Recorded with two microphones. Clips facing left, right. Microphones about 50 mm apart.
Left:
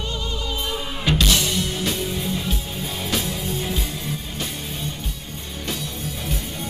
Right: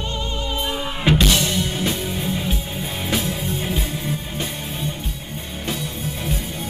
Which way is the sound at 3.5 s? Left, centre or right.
Centre.